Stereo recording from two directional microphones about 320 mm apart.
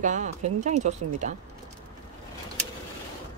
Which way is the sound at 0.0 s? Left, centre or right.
Right.